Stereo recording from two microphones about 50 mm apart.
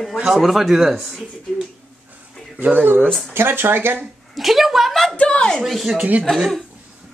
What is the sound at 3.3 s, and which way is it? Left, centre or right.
Speech, right.